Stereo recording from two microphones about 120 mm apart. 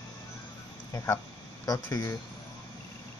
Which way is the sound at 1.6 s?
30° left (ahead or behind).